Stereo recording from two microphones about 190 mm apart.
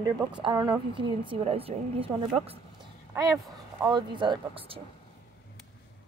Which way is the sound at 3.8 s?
20° right (ahead or behind).